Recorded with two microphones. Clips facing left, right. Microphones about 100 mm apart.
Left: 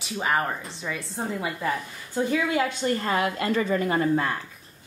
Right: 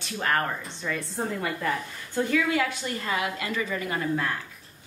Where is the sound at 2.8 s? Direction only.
40° left (ahead or behind).